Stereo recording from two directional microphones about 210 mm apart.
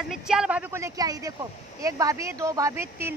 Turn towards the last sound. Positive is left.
turn(degrees=-10)  # may be behind; listen again after turning